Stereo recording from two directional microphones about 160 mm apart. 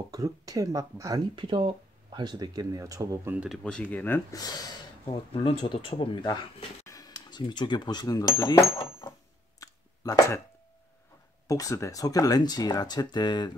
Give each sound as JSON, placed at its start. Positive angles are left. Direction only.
{"t": 0.1, "sound": "speech", "side_deg": -20}
{"t": 3.3, "sound": "speech", "side_deg": 0}
{"t": 9.6, "sound": "a sound", "side_deg": 20}
{"t": 11.4, "sound": "speech", "side_deg": 20}